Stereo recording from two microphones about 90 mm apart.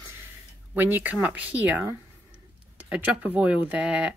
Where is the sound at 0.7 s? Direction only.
20° right (ahead or behind).